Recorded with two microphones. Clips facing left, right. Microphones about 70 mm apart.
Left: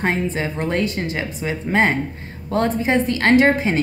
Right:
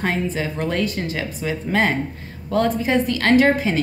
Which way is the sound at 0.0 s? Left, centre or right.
Left.